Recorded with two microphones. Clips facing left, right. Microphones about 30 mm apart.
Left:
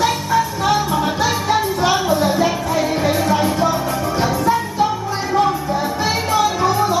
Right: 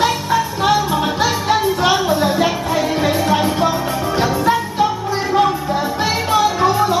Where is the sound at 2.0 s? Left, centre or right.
Right.